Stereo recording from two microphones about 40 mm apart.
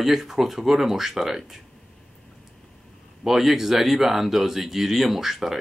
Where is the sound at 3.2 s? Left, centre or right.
Centre.